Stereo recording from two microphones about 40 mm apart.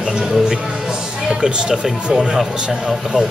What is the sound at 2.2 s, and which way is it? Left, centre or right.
Sheep, centre.